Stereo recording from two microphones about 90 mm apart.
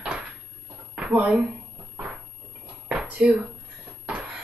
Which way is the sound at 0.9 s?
15° right (ahead or behind).